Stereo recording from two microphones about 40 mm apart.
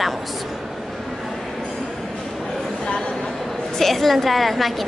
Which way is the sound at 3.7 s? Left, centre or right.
Centre.